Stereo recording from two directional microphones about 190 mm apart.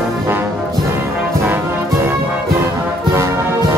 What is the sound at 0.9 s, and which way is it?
Brass instrument, 10° right (ahead or behind).